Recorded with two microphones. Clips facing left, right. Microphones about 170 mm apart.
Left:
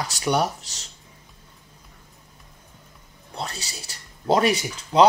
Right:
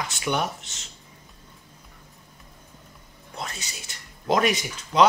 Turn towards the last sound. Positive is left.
turn(degrees=30)  # may be behind; listen again after turning